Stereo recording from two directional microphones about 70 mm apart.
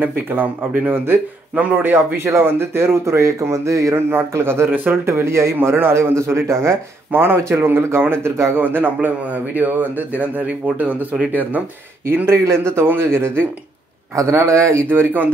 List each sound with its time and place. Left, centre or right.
0.0 s speech: right
5.0 s speech: right
7.1 s speech: right
12.1 s a man's voice: right
14.9 s speech: right